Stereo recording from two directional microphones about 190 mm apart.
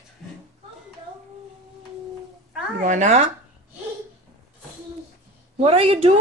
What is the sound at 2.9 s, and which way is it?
Speech, 40° right (ahead or behind).